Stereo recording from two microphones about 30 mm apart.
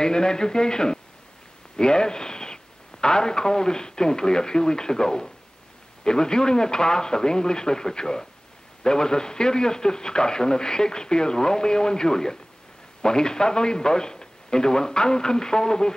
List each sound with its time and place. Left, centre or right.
0.0 s a man's voice: left